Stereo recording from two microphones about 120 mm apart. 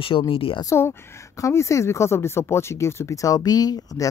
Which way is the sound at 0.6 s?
25° left (ahead or behind).